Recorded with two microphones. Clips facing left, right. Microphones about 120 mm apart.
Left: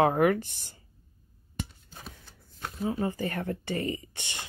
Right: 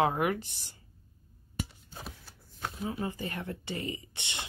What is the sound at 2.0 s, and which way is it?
Shuffling cards, 10° right (ahead or behind).